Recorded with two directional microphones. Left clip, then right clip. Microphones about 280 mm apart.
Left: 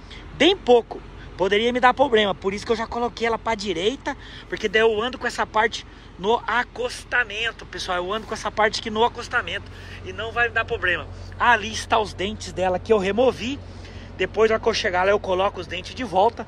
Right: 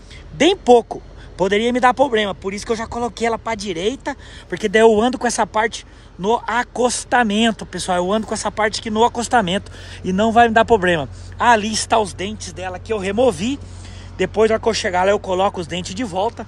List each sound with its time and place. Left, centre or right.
0.4 s speech: centre
7.1 s speech: right
16.1 s speech: centre